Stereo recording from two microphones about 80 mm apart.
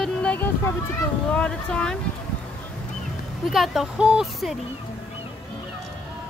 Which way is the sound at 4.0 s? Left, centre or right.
Centre.